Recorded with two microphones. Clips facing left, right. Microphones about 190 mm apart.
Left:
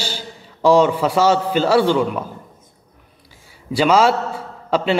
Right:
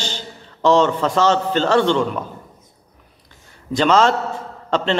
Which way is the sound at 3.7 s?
10° left (ahead or behind).